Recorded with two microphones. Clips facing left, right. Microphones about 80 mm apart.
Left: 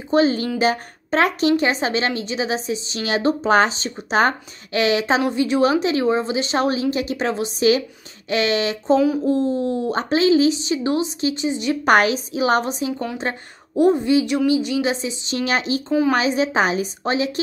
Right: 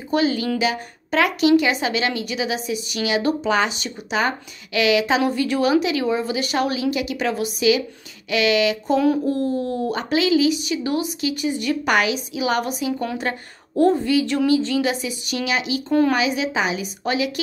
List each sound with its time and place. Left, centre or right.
0.1 s a woman's voice: left
5.2 s a woman's voice: left
11.8 s a woman's voice: left
15.4 s a woman's voice: left
15.9 s a woman's voice: centre
16.2 s a woman's voice: left